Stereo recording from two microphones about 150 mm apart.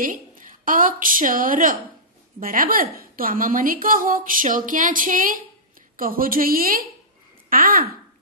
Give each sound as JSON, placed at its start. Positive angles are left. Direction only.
{"t": 0.0, "sound": "a woman's voice", "side_deg": -65}